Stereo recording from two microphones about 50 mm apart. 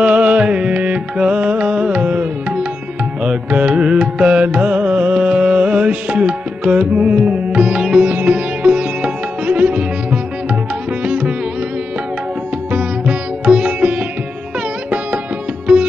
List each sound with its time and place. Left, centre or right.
0.0 s music: right
3.3 s carnatic music: right
8.1 s music: right
12.7 s sitar: right